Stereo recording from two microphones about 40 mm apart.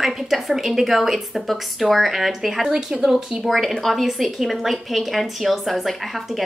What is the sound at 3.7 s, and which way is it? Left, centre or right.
A woman's voice, centre.